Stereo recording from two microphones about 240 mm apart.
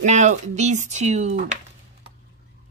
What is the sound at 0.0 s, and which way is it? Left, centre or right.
Speech, right.